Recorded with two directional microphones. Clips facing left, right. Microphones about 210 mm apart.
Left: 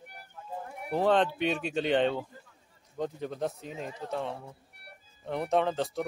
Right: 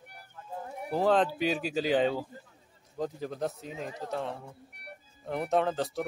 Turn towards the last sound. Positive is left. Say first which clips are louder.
# even
turn(degrees=0)  # may be behind; listen again after turning